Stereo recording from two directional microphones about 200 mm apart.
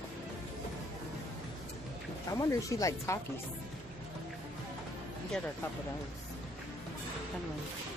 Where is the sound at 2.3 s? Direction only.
15° left (ahead or behind).